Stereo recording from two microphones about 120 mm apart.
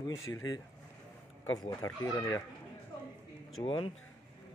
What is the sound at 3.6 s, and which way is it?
Speech, 45° left (ahead or behind).